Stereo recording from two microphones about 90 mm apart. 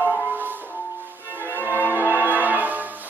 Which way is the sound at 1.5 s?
20° right (ahead or behind).